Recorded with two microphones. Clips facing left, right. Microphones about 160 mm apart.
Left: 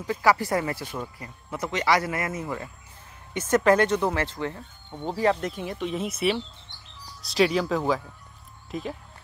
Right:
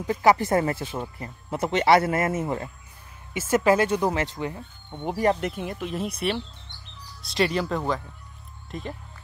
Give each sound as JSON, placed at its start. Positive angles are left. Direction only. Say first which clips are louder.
{"t": 0.0, "sound": "speech", "louder": "right 3 dB", "side_deg": -25}
{"t": 3.3, "sound": "speech", "louder": "even", "side_deg": -10}
{"t": 5.3, "sound": "speech", "louder": "right 1 dB", "side_deg": -5}